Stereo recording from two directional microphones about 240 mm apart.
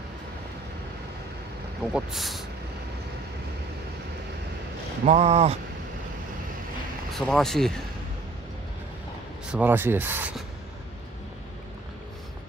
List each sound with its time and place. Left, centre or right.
1.9 s speech: centre
5.0 s a sound: right
7.1 s speech: centre
9.5 s speech: centre